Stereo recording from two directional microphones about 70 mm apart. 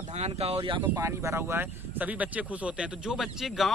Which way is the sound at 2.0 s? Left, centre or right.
Right.